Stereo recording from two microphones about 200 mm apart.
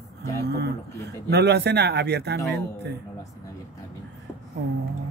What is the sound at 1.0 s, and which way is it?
Speech, 55° right (ahead or behind).